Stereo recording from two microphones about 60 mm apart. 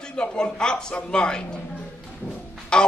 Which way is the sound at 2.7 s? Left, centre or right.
Centre.